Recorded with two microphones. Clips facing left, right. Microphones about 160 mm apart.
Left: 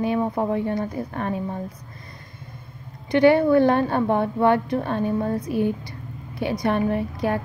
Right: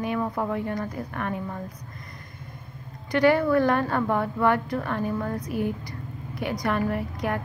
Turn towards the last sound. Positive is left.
turn(degrees=30)  # may be behind; listen again after turning